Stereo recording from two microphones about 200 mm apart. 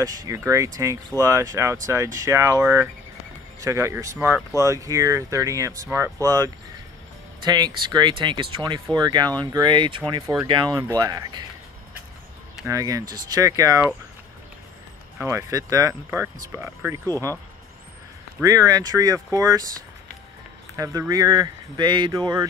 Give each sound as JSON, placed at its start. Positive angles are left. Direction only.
{"t": 0.0, "sound": "speech", "side_deg": -20}
{"t": 12.6, "sound": "speech", "side_deg": -15}
{"t": 15.2, "sound": "speech", "side_deg": -15}
{"t": 18.4, "sound": "speech", "side_deg": -15}
{"t": 20.7, "sound": "speech", "side_deg": -15}